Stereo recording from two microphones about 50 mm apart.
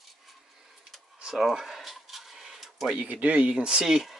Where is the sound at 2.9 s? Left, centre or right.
Right; by 4.2 s centre.